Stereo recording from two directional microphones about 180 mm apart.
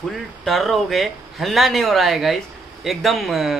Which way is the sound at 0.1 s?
Centre (ahead or behind).